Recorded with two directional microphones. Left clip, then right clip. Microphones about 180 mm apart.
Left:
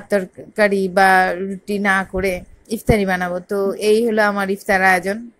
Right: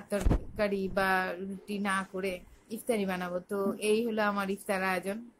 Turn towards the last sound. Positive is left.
turn(degrees=25)  # may be behind; listen again after turning